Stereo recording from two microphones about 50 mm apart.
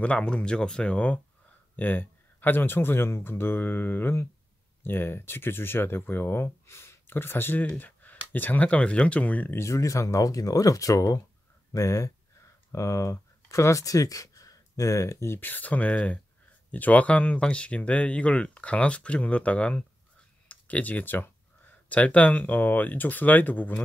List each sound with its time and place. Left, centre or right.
0.0 s speech: left
1.8 s speech: left
7.1 s speech: left
7.6 s a sound: left
8.6 s speech: left
9.6 s speech: left
14.8 s speech: left
15.4 s speech: left
21.8 s speech: left